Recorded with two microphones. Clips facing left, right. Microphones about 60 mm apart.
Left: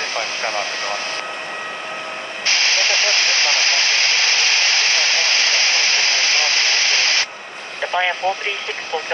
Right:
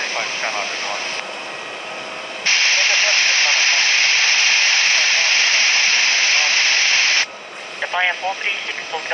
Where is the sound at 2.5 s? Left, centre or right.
Right.